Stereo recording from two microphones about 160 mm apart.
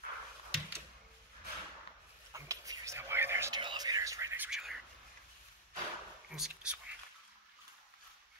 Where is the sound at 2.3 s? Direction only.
20° right (ahead or behind).